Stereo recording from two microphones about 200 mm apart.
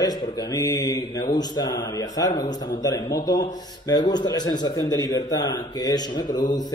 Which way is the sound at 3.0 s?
55° left (ahead or behind).